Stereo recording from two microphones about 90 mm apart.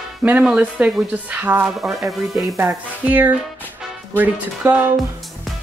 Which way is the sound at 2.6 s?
20° right (ahead or behind).